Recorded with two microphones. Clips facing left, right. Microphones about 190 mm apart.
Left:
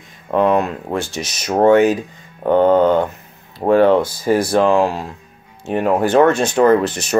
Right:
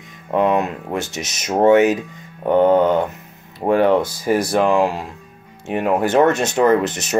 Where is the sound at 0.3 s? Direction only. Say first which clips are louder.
Left 2 dB; 20° right (ahead or behind).